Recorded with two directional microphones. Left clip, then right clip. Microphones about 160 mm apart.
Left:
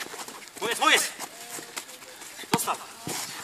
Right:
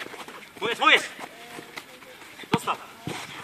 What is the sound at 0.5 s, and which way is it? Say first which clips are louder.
Speech: right 2 dB; 5° left (ahead or behind).